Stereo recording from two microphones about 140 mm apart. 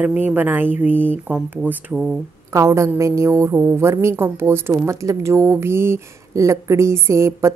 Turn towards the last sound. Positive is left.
turn(degrees=-20)  # may be behind; listen again after turning